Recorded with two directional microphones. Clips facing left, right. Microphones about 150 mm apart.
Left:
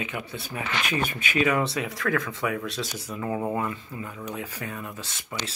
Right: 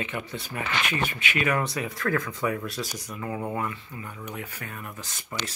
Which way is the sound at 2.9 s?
25° left (ahead or behind).